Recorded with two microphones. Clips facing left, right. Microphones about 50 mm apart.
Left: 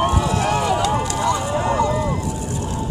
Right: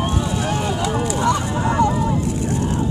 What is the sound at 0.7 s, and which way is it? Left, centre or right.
Run, left.